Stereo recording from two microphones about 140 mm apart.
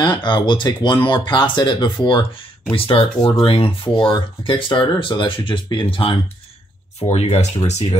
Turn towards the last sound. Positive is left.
turn(degrees=55)  # may be behind; listen again after turning